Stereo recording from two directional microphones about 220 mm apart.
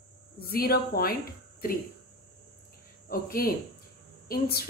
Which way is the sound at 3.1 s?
40° left (ahead or behind).